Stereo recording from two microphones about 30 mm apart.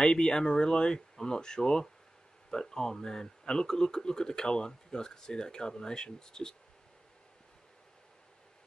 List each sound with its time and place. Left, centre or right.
0.0 s speech: left